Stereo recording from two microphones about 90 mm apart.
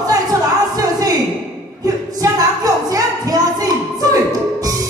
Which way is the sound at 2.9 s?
45° right (ahead or behind).